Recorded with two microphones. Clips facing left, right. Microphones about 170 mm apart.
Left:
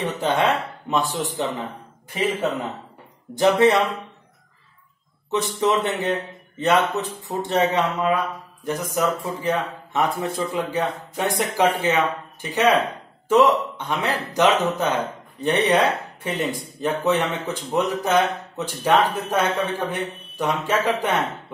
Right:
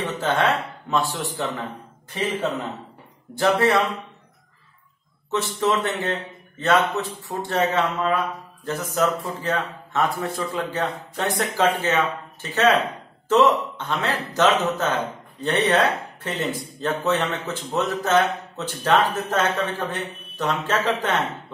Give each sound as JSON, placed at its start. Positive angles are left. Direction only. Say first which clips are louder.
{"t": 0.0, "sound": "a man's voice", "louder": "left 1 dB", "side_deg": 15}
{"t": 3.3, "sound": "speech", "louder": "left 3 dB", "side_deg": 20}
{"t": 5.3, "sound": "a man's voice", "louder": "left 1 dB", "side_deg": 15}